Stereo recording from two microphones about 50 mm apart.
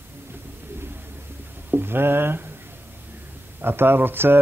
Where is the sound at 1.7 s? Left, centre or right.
Right.